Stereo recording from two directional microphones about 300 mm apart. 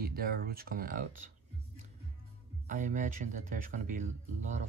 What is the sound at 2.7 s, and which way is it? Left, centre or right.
Speech, right.